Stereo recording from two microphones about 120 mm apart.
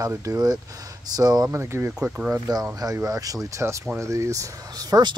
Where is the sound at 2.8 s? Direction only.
30° right (ahead or behind).